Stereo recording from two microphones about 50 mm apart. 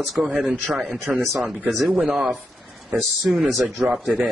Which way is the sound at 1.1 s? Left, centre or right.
Centre.